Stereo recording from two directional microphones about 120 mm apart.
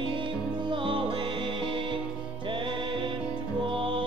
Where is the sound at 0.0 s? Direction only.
45° right (ahead or behind).